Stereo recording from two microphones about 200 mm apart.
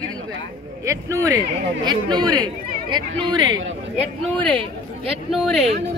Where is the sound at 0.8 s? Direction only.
15° right (ahead or behind).